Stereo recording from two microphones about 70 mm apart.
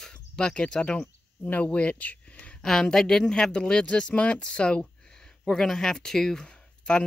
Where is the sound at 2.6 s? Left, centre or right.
Centre.